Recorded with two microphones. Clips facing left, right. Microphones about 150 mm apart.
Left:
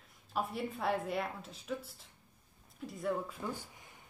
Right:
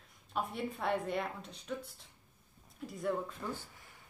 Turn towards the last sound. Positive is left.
turn(degrees=15)  # may be behind; listen again after turning